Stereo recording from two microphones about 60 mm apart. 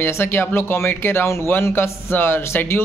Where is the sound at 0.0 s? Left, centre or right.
Left.